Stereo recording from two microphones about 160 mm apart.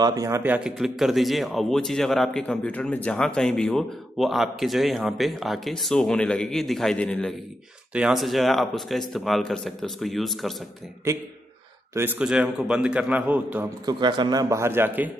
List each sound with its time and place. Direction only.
0.0 s a man's voice: 20° right (ahead or behind); by 7.3 s 10° left (ahead or behind)
7.9 s a man's voice: 5° right (ahead or behind)
11.9 s a man's voice: 15° right (ahead or behind)
13.8 s a man's voice: 30° right (ahead or behind)